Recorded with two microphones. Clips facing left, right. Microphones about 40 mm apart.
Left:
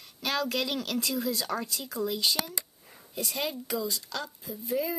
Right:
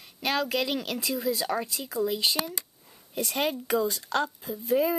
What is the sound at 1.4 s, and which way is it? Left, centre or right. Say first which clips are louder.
Speech: right 3 dB; right.